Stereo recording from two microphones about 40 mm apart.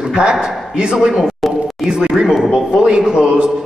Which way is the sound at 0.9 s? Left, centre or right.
Centre.